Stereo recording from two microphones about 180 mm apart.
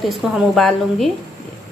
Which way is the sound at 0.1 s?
Centre (ahead or behind).